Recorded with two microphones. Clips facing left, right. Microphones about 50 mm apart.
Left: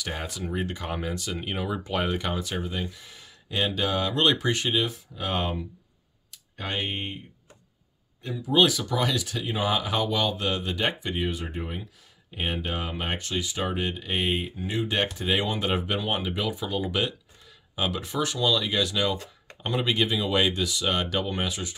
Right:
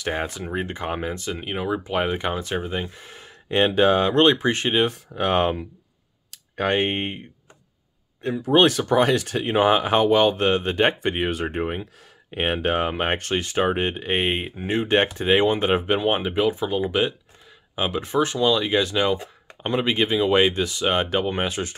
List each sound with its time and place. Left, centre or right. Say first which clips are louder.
0.0 s speech: right 6 dB; right
1.3 s speech: right 5 dB; centre; by 4.8 s right
4.8 s speech: right 8 dB; right
8.4 s speech: right 4 dB; right